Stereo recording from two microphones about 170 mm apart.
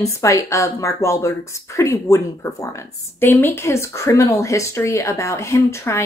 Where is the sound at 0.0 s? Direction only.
20° left (ahead or behind).